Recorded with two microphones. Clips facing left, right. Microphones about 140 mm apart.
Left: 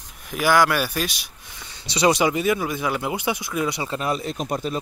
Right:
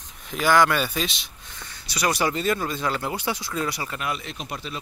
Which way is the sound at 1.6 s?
20° left (ahead or behind).